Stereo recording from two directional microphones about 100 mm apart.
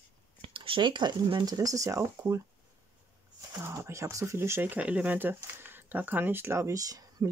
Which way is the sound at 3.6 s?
25° right (ahead or behind).